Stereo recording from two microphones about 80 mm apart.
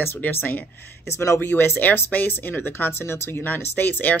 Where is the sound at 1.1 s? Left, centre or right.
Left.